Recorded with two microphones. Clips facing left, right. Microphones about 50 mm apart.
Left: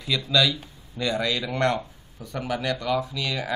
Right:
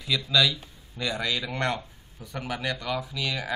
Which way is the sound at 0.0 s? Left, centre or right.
Centre.